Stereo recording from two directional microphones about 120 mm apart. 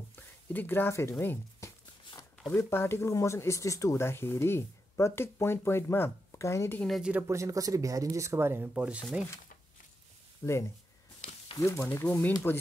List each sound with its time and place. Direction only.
0.1 s speech: 15° left (ahead or behind)
7.0 s speech: 10° right (ahead or behind)
7.2 s speech: 25° right (ahead or behind); by 9.0 s 10° right (ahead or behind)
10.4 s speech: 25° left (ahead or behind)